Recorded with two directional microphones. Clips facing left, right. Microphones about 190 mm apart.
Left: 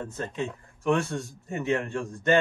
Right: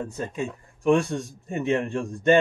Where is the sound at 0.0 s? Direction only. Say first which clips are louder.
Right 2 dB; 10° right (ahead or behind).